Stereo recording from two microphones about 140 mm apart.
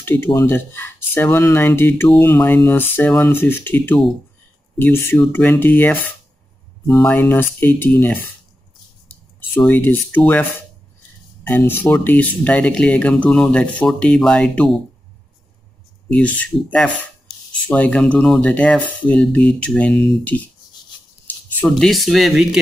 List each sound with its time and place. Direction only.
0.0 s speech: 15° left (ahead or behind)
9.6 s speech: 15° left (ahead or behind)
11.4 s speech: 15° left (ahead or behind)
16.1 s speech: 10° left (ahead or behind)
21.5 s speech: 5° left (ahead or behind)